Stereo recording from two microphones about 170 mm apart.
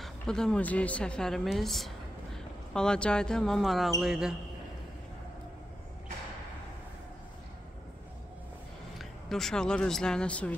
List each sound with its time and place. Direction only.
0.0 s a woman's voice: 5° left (ahead or behind)
8.9 s speech: centre (ahead or behind)